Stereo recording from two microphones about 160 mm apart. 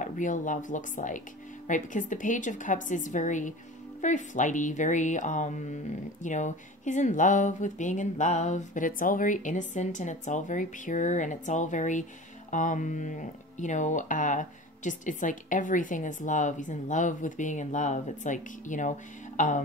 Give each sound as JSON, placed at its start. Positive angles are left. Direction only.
{"t": 0.0, "sound": "speech", "side_deg": 50}